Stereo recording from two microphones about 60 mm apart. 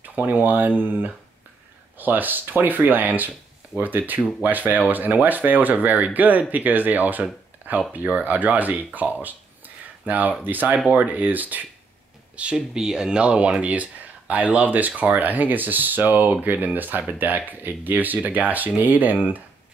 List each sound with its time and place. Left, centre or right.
0.0 s speech: right
12.4 s speech: centre